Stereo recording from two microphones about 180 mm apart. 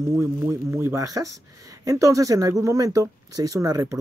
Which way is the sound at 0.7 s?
15° right (ahead or behind).